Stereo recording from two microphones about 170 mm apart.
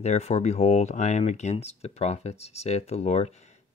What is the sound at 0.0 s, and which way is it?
Speech, 40° left (ahead or behind).